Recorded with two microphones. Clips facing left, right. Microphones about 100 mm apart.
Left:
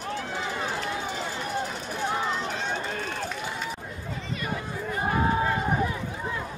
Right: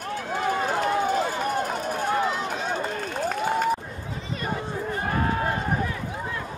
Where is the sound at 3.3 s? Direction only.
50° right (ahead or behind).